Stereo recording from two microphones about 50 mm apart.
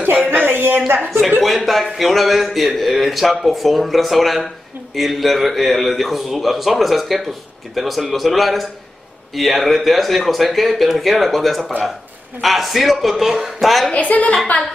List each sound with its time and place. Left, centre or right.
0.5 s speech: right
1.4 s a man's voice: centre
13.9 s a woman's voice: left